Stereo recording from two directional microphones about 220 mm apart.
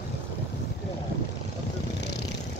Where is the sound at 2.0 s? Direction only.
50° left (ahead or behind).